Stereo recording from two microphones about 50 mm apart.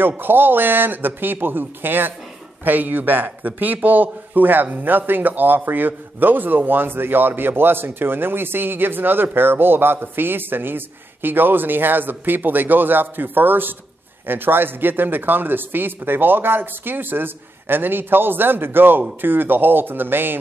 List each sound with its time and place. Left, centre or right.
0.2 s a man's voice: right